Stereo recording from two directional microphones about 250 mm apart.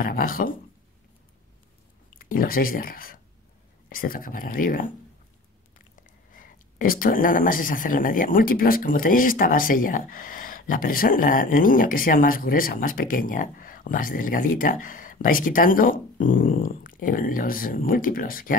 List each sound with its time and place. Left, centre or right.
0.0 s speech: left
2.1 s speech: left
6.3 s speech: left